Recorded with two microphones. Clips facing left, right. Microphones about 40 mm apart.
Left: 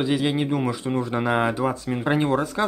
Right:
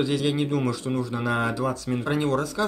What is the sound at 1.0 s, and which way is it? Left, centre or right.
Speech, left.